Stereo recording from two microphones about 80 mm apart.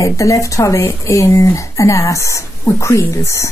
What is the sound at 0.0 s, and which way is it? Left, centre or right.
Speech, left.